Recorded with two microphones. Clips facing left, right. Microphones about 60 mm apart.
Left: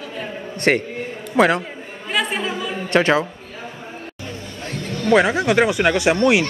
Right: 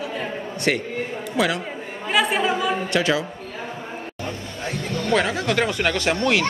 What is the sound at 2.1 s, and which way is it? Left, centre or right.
Speech, centre.